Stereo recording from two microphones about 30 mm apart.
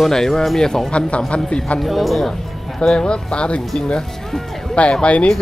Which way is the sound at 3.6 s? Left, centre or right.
Centre.